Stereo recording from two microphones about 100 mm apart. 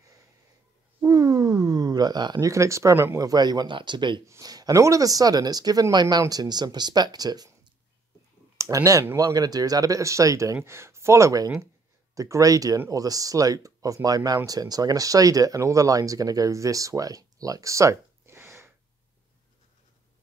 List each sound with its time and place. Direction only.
1.0 s a sound: 35° right (ahead or behind)
2.4 s speech: 30° right (ahead or behind)
3.2 s speech: 40° right (ahead or behind)
4.3 s speech: 40° right (ahead or behind)
8.5 s speech: 30° right (ahead or behind)